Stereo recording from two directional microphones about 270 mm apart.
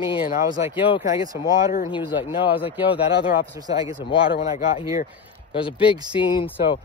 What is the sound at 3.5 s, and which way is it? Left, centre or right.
Speech, centre.